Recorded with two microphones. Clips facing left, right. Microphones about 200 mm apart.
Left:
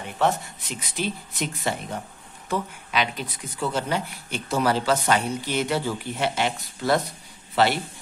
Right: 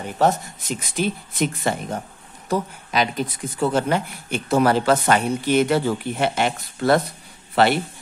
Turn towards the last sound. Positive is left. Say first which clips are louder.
# right 4 dB
turn(degrees=-55)  # may be behind; listen again after turning